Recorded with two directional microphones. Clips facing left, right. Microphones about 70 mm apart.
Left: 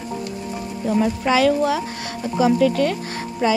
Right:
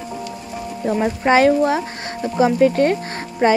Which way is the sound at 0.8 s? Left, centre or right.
Right.